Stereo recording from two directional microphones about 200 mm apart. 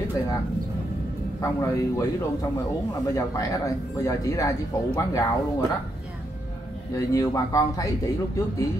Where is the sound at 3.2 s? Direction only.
15° left (ahead or behind).